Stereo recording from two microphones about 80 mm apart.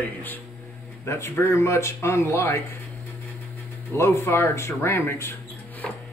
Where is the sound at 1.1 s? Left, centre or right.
Left.